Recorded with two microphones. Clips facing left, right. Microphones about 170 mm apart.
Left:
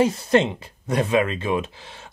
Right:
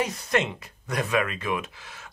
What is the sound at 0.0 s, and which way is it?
Speech, 30° left (ahead or behind).